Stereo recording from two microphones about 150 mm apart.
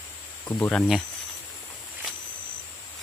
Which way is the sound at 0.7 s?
Centre (ahead or behind).